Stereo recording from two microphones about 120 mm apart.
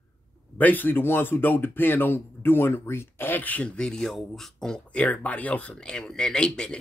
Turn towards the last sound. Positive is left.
turn(degrees=5)  # may be behind; listen again after turning